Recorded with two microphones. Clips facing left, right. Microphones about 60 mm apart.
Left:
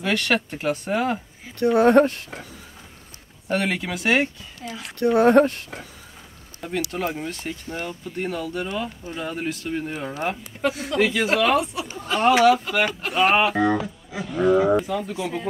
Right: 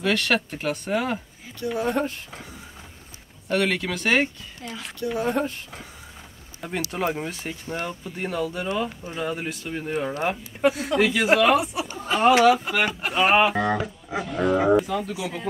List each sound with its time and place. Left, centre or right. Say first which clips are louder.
0.0 s speech: even; centre
1.6 s speech: left 9 dB; left
3.4 s speech: right 1 dB; centre
4.9 s speech: left 10 dB; left
6.9 s speech: right 1 dB; centre
12.0 s a sound: even; centre
12.4 s speech: left 1 dB; centre